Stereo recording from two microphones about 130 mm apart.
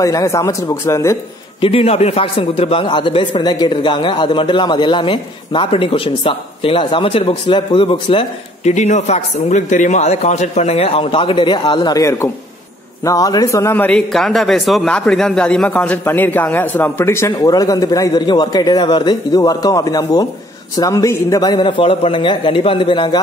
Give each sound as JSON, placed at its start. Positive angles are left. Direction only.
{"t": 0.0, "sound": "a man's voice", "side_deg": 25}
{"t": 1.6, "sound": "a man's voice", "side_deg": 50}
{"t": 8.6, "sound": "a man's voice", "side_deg": 65}